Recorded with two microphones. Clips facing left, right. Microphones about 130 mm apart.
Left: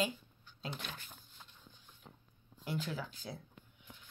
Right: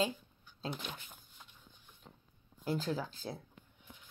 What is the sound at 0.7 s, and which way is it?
Speech, 15° right (ahead or behind).